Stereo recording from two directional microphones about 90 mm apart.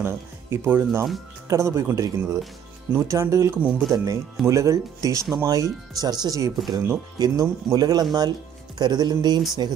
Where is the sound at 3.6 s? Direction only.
20° right (ahead or behind).